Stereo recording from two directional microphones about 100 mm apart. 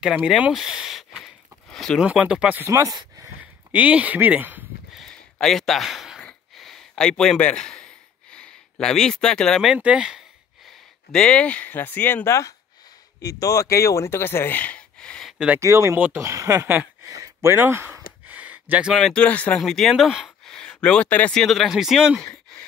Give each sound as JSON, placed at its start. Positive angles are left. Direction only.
{"t": 0.0, "sound": "a sound", "side_deg": -10}
{"t": 2.0, "sound": "speech", "side_deg": -10}
{"t": 2.6, "sound": "speech", "side_deg": -30}
{"t": 3.3, "sound": "speech", "side_deg": -15}
{"t": 4.9, "sound": "a sound", "side_deg": 5}
{"t": 9.7, "sound": "speech", "side_deg": -10}
{"t": 12.3, "sound": "speech", "side_deg": 30}
{"t": 15.3, "sound": "speech", "side_deg": -10}
{"t": 15.6, "sound": "speech", "side_deg": -30}
{"t": 17.1, "sound": "a sound", "side_deg": -30}
{"t": 18.9, "sound": "speech", "side_deg": 5}
{"t": 19.2, "sound": "speech", "side_deg": 15}
{"t": 19.6, "sound": "speech", "side_deg": 0}
{"t": 20.8, "sound": "speech", "side_deg": 10}